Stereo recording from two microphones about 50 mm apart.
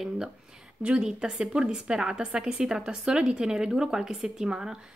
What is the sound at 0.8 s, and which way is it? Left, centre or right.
A woman's voice, centre.